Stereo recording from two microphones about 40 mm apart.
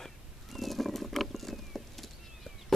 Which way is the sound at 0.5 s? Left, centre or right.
Centre.